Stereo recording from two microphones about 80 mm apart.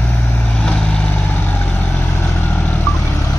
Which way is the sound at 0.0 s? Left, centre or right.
Left.